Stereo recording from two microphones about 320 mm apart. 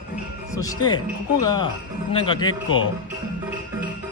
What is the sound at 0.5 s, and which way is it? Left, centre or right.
Speech, centre.